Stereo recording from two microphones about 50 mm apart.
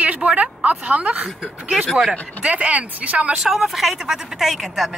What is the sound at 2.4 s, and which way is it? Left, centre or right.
Speech, right.